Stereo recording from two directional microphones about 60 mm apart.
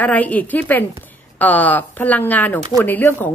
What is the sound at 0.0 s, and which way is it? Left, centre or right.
A woman's voice, left.